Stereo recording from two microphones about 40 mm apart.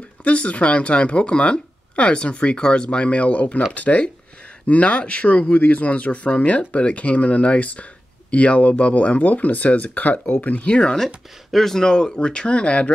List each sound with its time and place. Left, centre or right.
0.2 s speech: left
10.7 s speech: left
11.5 s speech: centre; by 12.9 s left